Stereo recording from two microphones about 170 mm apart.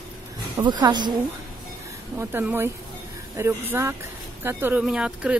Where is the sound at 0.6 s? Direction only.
25° right (ahead or behind).